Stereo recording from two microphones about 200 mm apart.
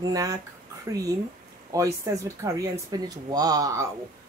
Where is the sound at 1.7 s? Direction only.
15° right (ahead or behind).